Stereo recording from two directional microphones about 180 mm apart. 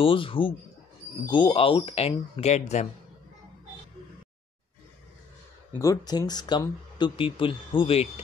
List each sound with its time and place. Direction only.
0.0 s speech: 30° left (ahead or behind)
5.7 s speech: 15° left (ahead or behind); by 8.1 s 30° left (ahead or behind)